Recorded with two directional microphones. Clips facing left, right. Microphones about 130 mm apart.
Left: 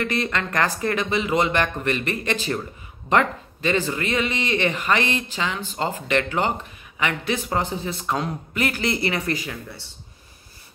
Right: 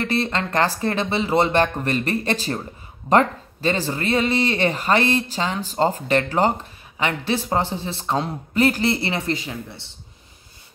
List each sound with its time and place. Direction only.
0.0 s speech: 30° right (ahead or behind)